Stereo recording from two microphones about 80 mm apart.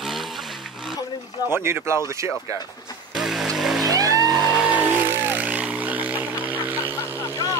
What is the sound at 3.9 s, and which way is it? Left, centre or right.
Vehicle, right.